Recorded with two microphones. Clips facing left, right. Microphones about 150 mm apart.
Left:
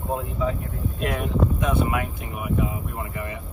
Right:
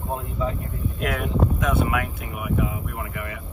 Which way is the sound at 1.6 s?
20° left (ahead or behind).